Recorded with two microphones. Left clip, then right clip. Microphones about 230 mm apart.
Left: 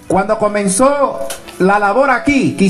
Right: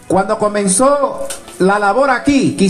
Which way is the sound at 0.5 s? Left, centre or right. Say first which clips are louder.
Even; left.